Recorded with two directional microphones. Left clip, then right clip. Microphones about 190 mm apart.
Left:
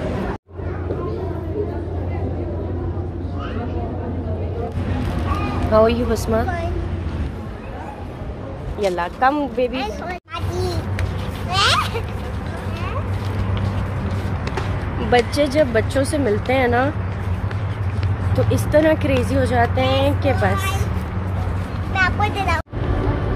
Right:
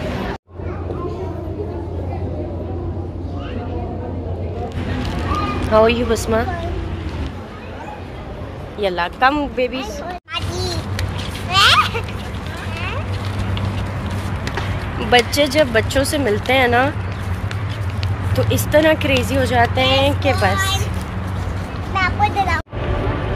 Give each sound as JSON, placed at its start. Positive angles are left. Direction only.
{"t": 5.7, "sound": "speech", "side_deg": 0}
{"t": 8.8, "sound": "speech", "side_deg": 5}
{"t": 10.3, "sound": "a sound", "side_deg": 15}
{"t": 11.5, "sound": "a sound", "side_deg": 0}
{"t": 15.0, "sound": "speech", "side_deg": -5}
{"t": 18.3, "sound": "speech", "side_deg": 0}
{"t": 22.2, "sound": "vehicle", "side_deg": 20}